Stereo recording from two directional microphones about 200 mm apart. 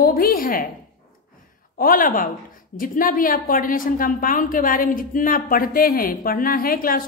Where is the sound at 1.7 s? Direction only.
45° left (ahead or behind).